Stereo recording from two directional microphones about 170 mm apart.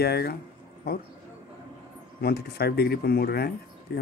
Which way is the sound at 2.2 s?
65° left (ahead or behind).